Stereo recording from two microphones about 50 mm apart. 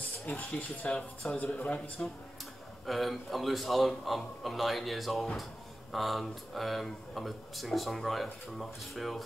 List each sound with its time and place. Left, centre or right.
0.5 s speech: left
1.6 s a man's voice: centre
2.9 s speech: centre